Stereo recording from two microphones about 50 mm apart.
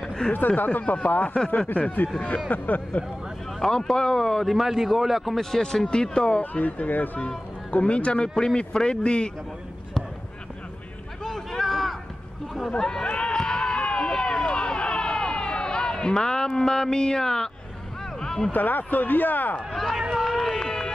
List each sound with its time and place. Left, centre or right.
0.2 s speech: centre
0.7 s speech: left
3.5 s speech: centre
4.5 s a man's voice: centre
6.4 s speech: left; by 9.3 s centre
11.2 s a sound: centre
12.7 s run: centre
18.2 s a sound: centre
18.5 s speech: left
19.7 s speech: centre
20.2 s run: centre